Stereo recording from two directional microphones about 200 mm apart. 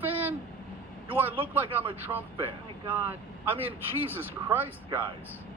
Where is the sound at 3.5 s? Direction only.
10° right (ahead or behind).